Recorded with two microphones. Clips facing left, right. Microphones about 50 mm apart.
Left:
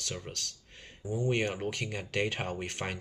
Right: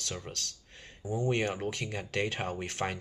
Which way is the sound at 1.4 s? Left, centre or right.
Centre.